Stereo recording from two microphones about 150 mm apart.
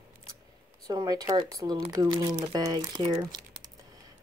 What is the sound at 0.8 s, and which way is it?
Speech, 25° right (ahead or behind).